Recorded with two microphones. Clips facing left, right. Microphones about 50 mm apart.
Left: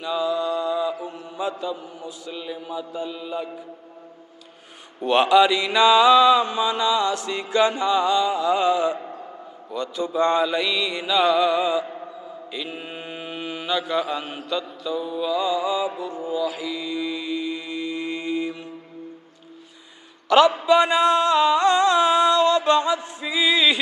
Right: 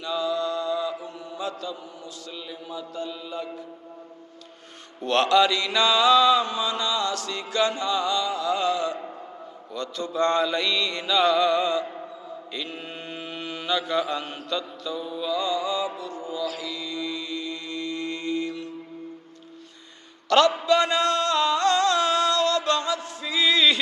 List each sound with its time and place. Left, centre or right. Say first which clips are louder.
0.0 s music: left 3 dB; centre
1.0 s mantra: left 4 dB; centre
5.0 s mantra: left 4 dB; centre
20.2 s a man's voice: left 3 dB; centre
20.6 s music: left 4 dB; centre